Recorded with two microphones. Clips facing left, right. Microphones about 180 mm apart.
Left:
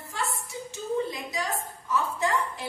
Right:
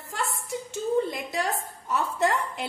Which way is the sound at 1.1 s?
60° right (ahead or behind).